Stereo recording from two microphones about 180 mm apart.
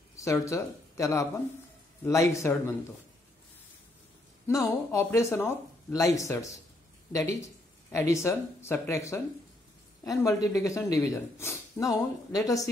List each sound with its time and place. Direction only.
0.1 s speech: 15° left (ahead or behind)
4.5 s speech: 15° left (ahead or behind)
7.9 s speech: 15° left (ahead or behind)